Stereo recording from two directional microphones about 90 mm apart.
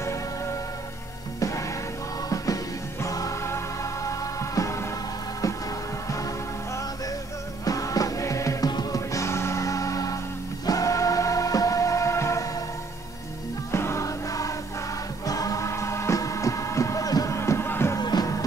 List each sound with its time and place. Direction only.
2.2 s music: 40° left (ahead or behind)
7.6 s music: 40° left (ahead or behind)
9.1 s music: 30° left (ahead or behind)
13.7 s music: 30° left (ahead or behind)
17.9 s music: 45° left (ahead or behind)